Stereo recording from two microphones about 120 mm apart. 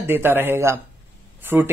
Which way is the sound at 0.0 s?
20° right (ahead or behind).